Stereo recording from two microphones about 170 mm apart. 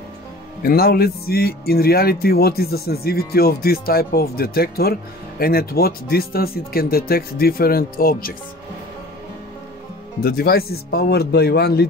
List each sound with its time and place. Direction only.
0.6 s speech: 60° left (ahead or behind)
10.2 s a man's voice: 60° left (ahead or behind)